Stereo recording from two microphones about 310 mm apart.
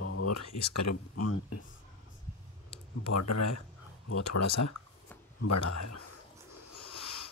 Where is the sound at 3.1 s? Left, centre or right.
Left.